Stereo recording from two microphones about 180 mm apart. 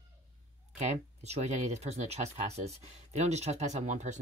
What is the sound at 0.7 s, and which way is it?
Speech, 40° right (ahead or behind).